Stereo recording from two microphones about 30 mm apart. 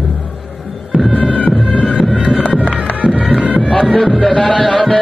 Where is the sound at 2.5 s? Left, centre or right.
Right.